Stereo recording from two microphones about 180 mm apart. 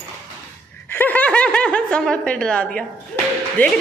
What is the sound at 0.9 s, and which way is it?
A woman's voice, 10° left (ahead or behind).